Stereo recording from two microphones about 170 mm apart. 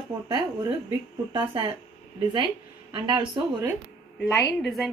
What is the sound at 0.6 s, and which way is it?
Speech, 20° right (ahead or behind).